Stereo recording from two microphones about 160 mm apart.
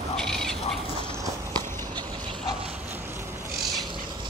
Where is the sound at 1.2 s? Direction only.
25° right (ahead or behind).